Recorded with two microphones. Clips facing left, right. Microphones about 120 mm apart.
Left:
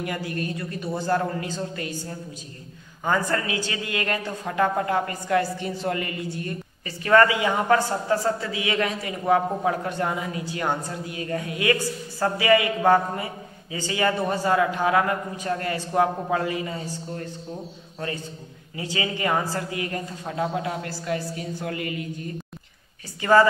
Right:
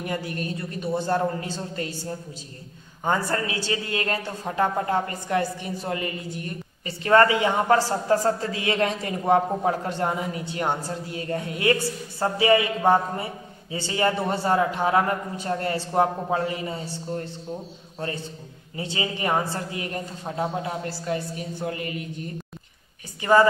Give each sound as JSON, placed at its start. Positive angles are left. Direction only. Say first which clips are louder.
{"t": 0.0, "sound": "a man's voice", "louder": "left 1 dB", "side_deg": -25}
{"t": 8.1, "sound": "a man's voice", "louder": "right 3 dB", "side_deg": -40}
{"t": 18.8, "sound": "a man's voice", "louder": "left 1 dB", "side_deg": -25}